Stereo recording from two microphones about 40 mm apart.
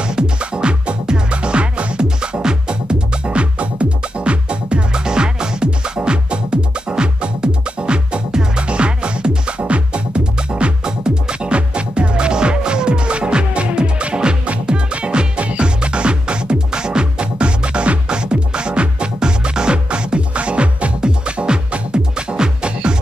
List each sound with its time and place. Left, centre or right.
0.0 s music: right